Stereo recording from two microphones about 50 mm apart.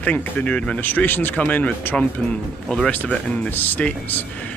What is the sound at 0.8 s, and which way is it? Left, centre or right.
Speech, left.